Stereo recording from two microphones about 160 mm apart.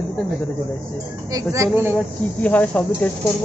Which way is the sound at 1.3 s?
20° right (ahead or behind).